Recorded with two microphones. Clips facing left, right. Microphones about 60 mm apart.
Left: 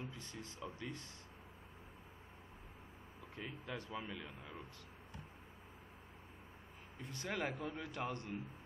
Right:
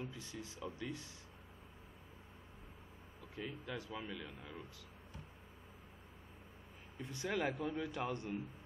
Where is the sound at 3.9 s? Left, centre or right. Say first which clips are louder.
Even; centre.